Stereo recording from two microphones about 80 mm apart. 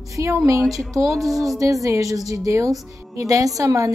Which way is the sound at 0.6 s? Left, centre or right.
Centre.